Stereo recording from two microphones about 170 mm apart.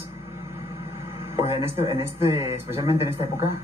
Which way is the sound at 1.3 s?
15° right (ahead or behind).